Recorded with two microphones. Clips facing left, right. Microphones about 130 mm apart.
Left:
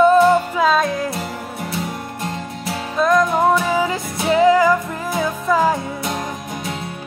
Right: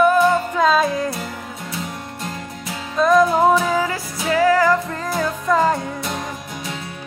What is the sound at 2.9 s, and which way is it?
Music, centre (ahead or behind).